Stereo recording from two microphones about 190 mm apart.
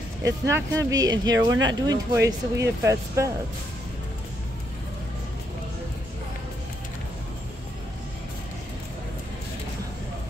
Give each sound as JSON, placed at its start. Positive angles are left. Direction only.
{"t": 0.2, "sound": "speech", "side_deg": -15}